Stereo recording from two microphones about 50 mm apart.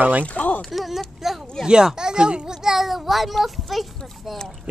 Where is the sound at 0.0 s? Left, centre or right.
Right.